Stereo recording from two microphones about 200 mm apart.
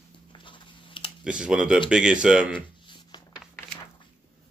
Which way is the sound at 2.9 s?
20° left (ahead or behind).